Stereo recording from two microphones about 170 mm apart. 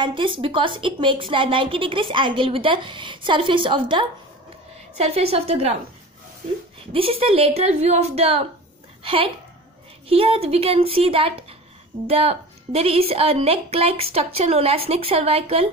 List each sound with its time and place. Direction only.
0.0 s a woman's voice: 30° right (ahead or behind)
6.9 s a woman's voice: 35° right (ahead or behind)